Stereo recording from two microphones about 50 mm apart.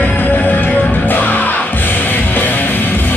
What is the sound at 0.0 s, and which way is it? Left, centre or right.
Music, left.